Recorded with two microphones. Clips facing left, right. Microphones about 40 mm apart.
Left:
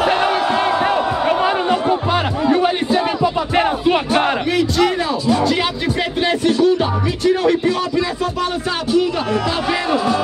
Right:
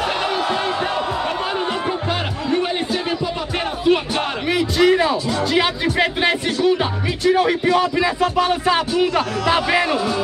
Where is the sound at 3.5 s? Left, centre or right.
Left.